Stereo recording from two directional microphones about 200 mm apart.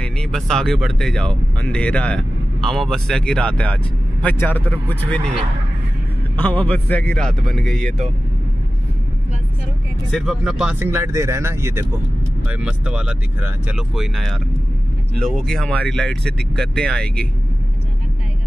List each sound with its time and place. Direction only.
0.0 s speech: centre (ahead or behind)
6.3 s speech: 10° left (ahead or behind)
10.1 s speech: centre (ahead or behind)